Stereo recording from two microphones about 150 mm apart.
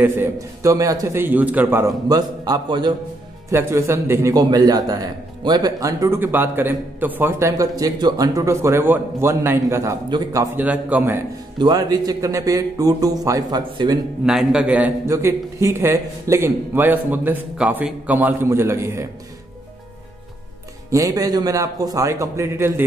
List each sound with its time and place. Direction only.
0.0 s a man's voice: 20° right (ahead or behind)
2.0 s a man's voice: 25° right (ahead or behind)
3.4 s a man's voice: 15° right (ahead or behind)
10.6 s a man's voice: 10° right (ahead or behind)
11.5 s a man's voice: 30° right (ahead or behind)
14.2 s a man's voice: 5° right (ahead or behind)
20.9 s a man's voice: 25° right (ahead or behind)